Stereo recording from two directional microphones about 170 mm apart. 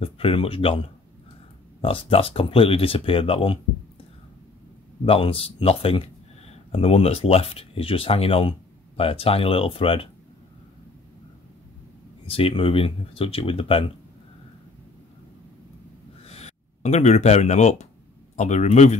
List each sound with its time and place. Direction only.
0.0 s speech: 35° left (ahead or behind)
5.0 s speech: 35° left (ahead or behind)
12.3 s speech: 35° left (ahead or behind)
16.3 s a man's voice: 40° left (ahead or behind)